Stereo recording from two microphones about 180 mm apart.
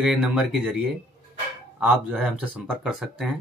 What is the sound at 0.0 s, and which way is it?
Speech, centre (ahead or behind).